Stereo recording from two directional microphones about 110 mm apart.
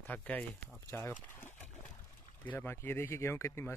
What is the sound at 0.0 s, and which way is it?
Speech, 15° left (ahead or behind).